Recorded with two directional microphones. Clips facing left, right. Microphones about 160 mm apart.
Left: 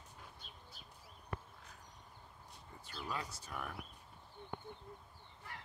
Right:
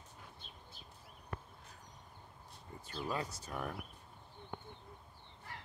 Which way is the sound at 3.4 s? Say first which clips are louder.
Right 4 dB; 30° right (ahead or behind).